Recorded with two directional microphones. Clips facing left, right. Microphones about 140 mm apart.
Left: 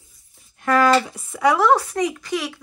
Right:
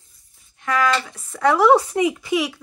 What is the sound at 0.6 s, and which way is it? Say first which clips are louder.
Speech: left 4 dB; 40° left (ahead or behind).